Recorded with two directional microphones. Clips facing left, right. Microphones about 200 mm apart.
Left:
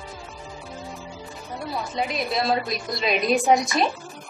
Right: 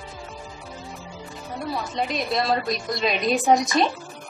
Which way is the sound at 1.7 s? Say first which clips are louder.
Even; centre (ahead or behind).